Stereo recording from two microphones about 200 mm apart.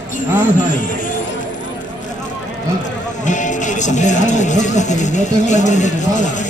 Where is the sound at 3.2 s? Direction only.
40° left (ahead or behind).